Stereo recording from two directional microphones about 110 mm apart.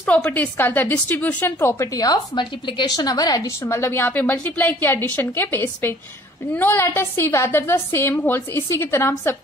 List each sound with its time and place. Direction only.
0.0 s a woman's voice: 15° left (ahead or behind)
2.0 s a woman's voice: 35° left (ahead or behind)